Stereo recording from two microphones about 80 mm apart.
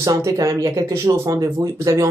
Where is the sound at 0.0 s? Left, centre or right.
Right.